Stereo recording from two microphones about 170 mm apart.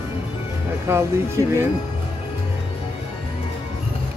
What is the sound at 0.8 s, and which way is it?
Speech, 15° right (ahead or behind).